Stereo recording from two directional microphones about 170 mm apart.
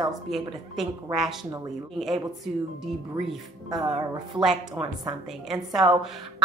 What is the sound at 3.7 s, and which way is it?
Speech, 25° right (ahead or behind).